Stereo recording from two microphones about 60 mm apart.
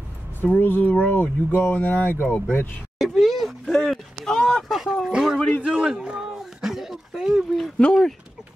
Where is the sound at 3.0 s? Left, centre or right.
Centre.